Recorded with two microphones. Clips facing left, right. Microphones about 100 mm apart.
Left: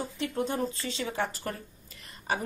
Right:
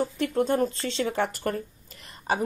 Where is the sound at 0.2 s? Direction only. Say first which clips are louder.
Right 5 dB; 55° right (ahead or behind).